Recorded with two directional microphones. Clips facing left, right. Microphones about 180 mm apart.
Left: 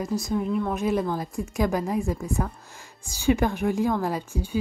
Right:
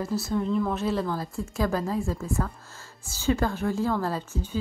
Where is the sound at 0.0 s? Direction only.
15° left (ahead or behind).